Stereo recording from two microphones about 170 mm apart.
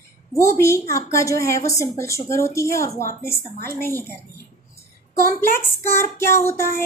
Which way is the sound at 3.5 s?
60° right (ahead or behind).